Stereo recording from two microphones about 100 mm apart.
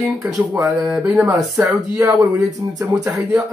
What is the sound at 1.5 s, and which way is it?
Speech, 35° right (ahead or behind).